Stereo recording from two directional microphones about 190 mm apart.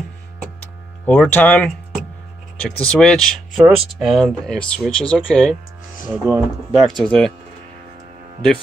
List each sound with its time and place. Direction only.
1.0 s speech: 5° left (ahead or behind)
7.0 s speech: 5° left (ahead or behind)